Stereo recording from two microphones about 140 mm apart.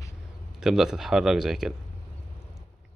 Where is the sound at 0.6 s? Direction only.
5° right (ahead or behind).